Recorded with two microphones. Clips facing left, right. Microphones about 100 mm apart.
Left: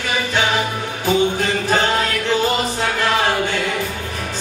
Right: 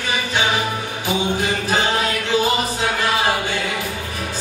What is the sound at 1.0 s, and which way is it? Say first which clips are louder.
Music: left 4 dB; 15° right (ahead or behind).